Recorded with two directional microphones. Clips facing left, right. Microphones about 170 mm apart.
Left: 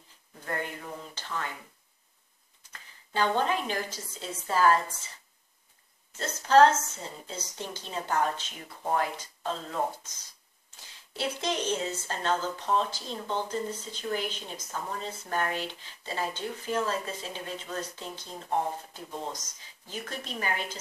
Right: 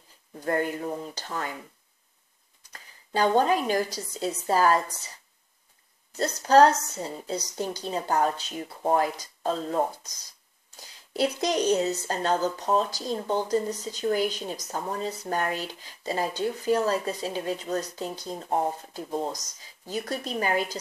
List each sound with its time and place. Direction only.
0.5 s speech: 40° right (ahead or behind)
2.7 s a woman's voice: 40° right (ahead or behind)
6.1 s speech: 40° right (ahead or behind)
11.1 s speech: 40° right (ahead or behind)